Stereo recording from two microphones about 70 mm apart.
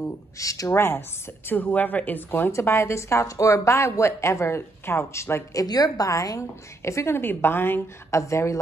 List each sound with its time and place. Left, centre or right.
0.4 s a woman's voice: left
0.7 s a woman's voice: left
1.5 s speech: left
2.5 s a woman's voice: left
5.6 s a woman's voice: left
8.2 s a woman's voice: left